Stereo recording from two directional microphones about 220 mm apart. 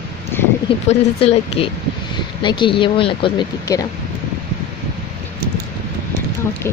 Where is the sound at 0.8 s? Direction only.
25° left (ahead or behind).